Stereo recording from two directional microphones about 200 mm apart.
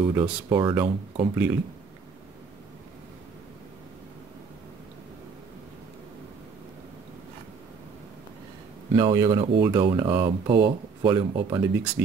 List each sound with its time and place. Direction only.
0.0 s speech: 25° right (ahead or behind)
1.3 s speech: 10° right (ahead or behind)
8.9 s speech: 20° right (ahead or behind)